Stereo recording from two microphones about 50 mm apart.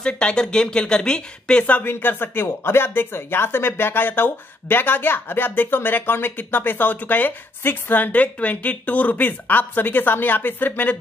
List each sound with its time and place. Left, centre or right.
0.0 s a woman's voice: centre
1.6 s speech: left
1.9 s speech: left